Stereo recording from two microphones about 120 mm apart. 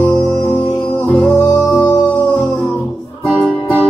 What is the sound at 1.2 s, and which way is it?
Music, 15° left (ahead or behind).